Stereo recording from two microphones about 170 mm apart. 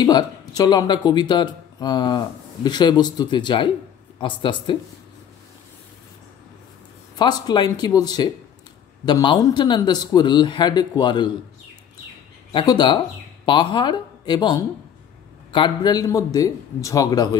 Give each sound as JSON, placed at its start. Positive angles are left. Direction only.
{"t": 0.0, "sound": "speech", "side_deg": 20}
{"t": 7.2, "sound": "speech", "side_deg": 25}
{"t": 12.5, "sound": "speech", "side_deg": 25}